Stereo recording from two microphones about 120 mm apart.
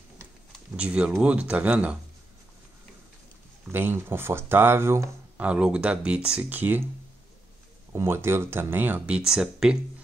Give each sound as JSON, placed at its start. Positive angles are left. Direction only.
{"t": 0.7, "sound": "speech", "side_deg": -10}
{"t": 3.7, "sound": "speech", "side_deg": -20}
{"t": 5.4, "sound": "speech", "side_deg": -10}
{"t": 7.9, "sound": "speech", "side_deg": -20}